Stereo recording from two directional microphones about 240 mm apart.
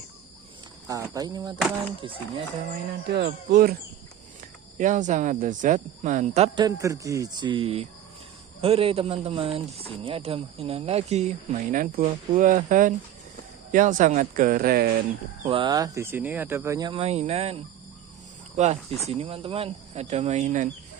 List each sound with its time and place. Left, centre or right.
0.8 s speech: centre
3.1 s speech: right
4.7 s speech: right
15.4 s speech: right
18.6 s speech: right